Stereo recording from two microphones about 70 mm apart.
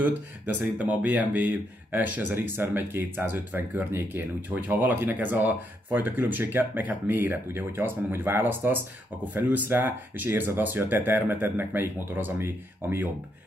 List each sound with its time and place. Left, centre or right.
0.7 s speech: right